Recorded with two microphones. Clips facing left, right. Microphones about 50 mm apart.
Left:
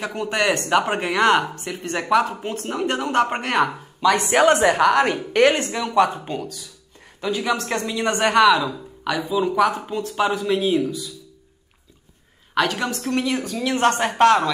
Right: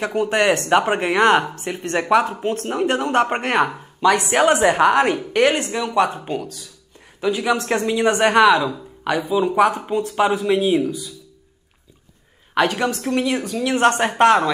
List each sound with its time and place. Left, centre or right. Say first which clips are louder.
0.0 s speech: right 4 dB; centre
12.5 s speech: right 3 dB; centre